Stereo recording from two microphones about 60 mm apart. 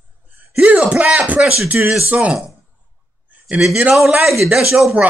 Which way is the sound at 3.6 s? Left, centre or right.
Centre.